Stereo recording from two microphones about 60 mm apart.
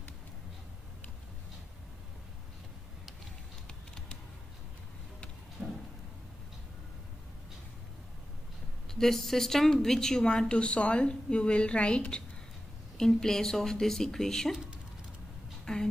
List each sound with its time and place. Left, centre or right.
3.6 s typing: centre
5.6 s a sound: centre
8.9 s speech: centre
15.6 s speech: centre